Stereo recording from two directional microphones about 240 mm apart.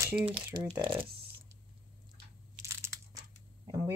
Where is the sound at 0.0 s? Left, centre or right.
Centre.